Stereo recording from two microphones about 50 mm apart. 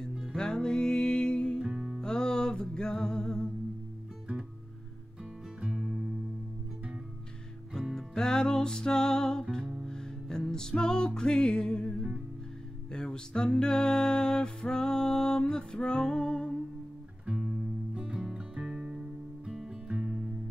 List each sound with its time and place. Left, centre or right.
0.4 s music: centre
1.6 s music: centre
2.0 s music: centre
7.9 s music: centre
12.9 s music: centre
17.9 s music: centre
18.2 s music: centre